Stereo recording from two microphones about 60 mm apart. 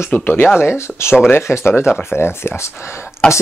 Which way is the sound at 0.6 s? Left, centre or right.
Left.